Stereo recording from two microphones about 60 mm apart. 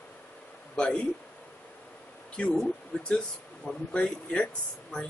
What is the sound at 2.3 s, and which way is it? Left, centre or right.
Speech, centre.